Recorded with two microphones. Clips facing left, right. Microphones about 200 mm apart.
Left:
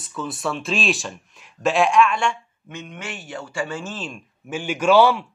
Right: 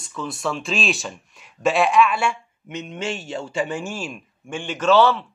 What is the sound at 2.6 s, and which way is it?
Speech, 20° right (ahead or behind).